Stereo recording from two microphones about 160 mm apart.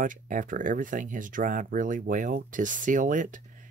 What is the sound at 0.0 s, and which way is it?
Speech, 55° right (ahead or behind).